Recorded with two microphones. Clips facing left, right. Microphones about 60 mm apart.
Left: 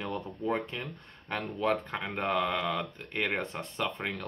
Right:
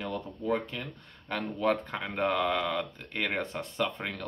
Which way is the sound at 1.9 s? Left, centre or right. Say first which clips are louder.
Right 1 dB; centre.